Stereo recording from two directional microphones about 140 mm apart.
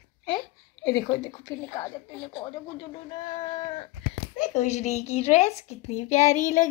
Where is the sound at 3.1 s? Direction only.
35° left (ahead or behind).